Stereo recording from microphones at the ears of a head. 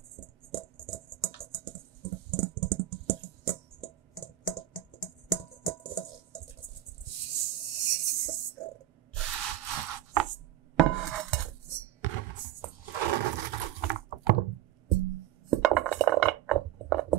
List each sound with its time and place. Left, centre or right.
0.1 s music: right